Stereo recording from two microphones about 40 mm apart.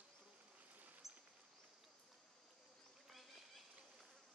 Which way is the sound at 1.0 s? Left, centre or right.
Centre.